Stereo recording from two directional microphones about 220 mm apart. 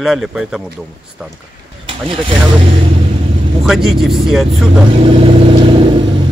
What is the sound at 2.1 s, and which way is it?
Speech, 25° right (ahead or behind).